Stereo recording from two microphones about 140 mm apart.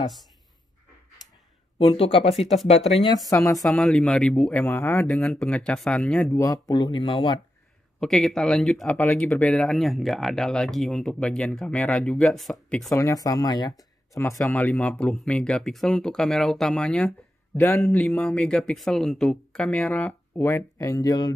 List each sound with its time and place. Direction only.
1.8 s speech: 40° left (ahead or behind)
2.3 s speech: centre (ahead or behind)
2.9 s speech: 35° left (ahead or behind)
3.3 s speech: 25° left (ahead or behind)
3.6 s speech: 5° left (ahead or behind)
5.0 s speech: 5° left (ahead or behind)
6.3 s speech: 20° left (ahead or behind)
8.0 s speech: 5° left (ahead or behind)
12.9 s speech: 25° left (ahead or behind); by 17.1 s 5° left (ahead or behind)
17.6 s speech: 15° left (ahead or behind)